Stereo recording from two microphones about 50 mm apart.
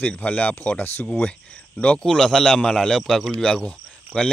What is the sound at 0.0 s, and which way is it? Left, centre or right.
Speech, left.